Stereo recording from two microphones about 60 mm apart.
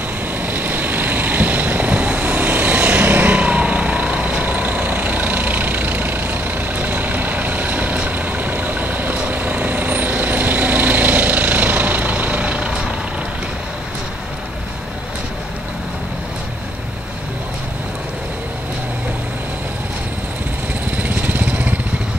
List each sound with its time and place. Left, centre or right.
0.4 s vehicle: right
20.9 s vehicle: right